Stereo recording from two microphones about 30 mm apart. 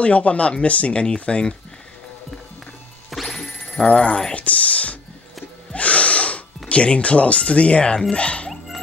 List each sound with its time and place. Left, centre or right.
0.0 s speech: left
3.1 s music: centre
3.8 s speech: left
4.4 s a sound: left
5.7 s music: left
6.7 s speech: left